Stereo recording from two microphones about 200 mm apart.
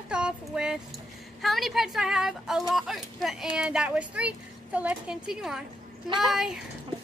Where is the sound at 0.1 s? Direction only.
5° right (ahead or behind).